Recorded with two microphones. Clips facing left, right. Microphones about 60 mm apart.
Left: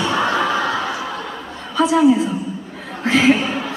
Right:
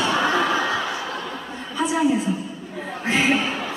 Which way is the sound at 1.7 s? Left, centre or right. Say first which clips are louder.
Left 7 dB; left.